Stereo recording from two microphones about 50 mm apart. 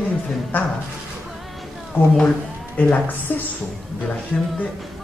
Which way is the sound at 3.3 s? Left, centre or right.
Left.